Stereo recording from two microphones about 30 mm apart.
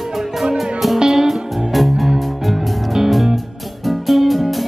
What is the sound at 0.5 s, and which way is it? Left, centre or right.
Music, centre.